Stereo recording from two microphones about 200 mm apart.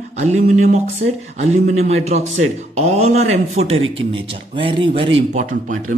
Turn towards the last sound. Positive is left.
turn(degrees=-40)  # may be behind; listen again after turning